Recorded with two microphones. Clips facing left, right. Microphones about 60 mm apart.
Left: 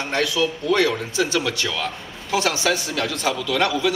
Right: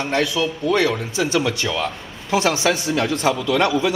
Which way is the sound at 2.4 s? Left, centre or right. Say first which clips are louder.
Right 2 dB; right.